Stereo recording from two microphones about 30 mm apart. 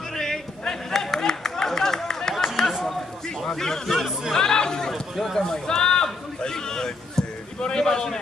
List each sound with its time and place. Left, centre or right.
0.1 s a sound: centre
3.5 s a man's voice: centre
4.3 s chatter: left
5.1 s speech: centre
5.5 s a sound: left
6.4 s a man's voice: centre